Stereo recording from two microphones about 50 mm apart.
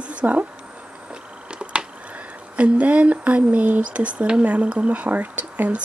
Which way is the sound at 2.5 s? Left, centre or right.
Right.